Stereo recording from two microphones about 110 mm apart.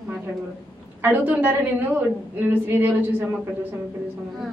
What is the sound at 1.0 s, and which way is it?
A woman's voice, 15° right (ahead or behind).